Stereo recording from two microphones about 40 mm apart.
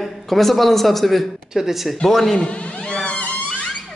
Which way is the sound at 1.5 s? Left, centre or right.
Centre.